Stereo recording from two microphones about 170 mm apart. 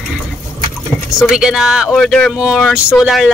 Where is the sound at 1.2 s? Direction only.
5° right (ahead or behind).